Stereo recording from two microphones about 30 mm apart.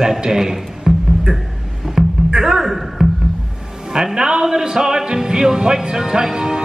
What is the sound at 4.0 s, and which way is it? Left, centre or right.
Music, right.